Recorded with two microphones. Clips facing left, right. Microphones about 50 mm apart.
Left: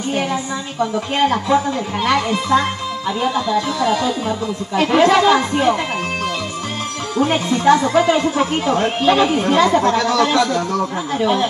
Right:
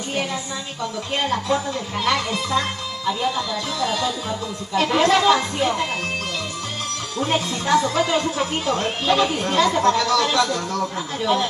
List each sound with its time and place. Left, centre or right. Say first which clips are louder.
0.1 s a woman's voice: left 5 dB; left
7.2 s speech: left 6 dB; left